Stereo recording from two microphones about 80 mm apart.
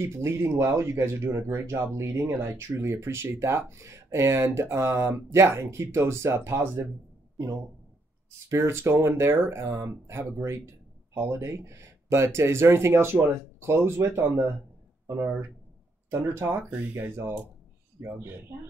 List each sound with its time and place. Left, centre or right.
0.0 s speech: right
8.5 s speech: right